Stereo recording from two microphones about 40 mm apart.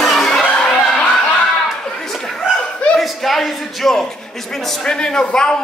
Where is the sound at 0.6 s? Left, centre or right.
Centre.